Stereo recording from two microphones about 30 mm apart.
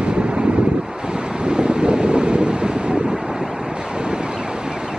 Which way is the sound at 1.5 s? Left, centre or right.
Right.